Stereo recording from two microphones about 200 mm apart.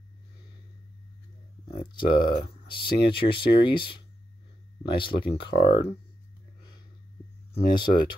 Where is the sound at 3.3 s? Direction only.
25° left (ahead or behind).